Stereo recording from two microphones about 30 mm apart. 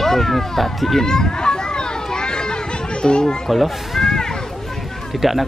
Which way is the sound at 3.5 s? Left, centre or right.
Centre.